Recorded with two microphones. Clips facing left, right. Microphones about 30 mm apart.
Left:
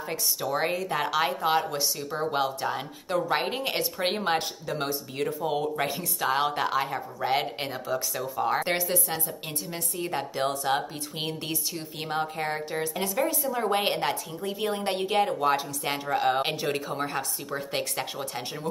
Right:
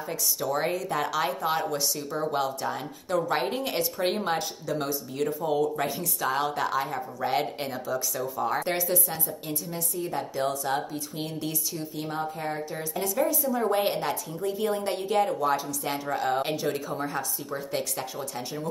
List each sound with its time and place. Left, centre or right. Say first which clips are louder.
0.4 s speech: even; centre
6.9 s speech: left 1 dB; centre
9.7 s speech: left 2 dB; left
12.7 s speech: right 1 dB; left
13.7 s speech: even; left
14.4 s speech: right 2 dB; centre; by 18.7 s left